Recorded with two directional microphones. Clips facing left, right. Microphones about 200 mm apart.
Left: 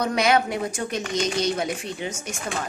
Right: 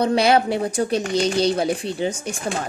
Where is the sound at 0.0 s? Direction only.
30° right (ahead or behind).